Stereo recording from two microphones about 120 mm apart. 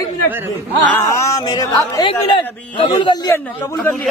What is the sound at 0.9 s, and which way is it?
Speech, 25° left (ahead or behind).